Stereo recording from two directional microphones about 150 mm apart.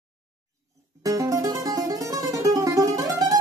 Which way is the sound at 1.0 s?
25° right (ahead or behind).